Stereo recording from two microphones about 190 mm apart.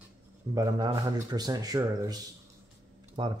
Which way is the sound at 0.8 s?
20° right (ahead or behind).